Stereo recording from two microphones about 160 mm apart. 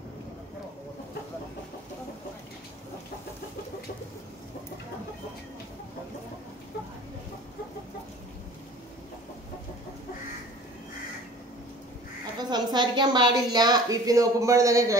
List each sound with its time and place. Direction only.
12.4 s a woman's voice: 25° right (ahead or behind)